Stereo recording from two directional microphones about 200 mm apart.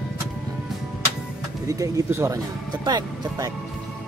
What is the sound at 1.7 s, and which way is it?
Speech, 15° right (ahead or behind).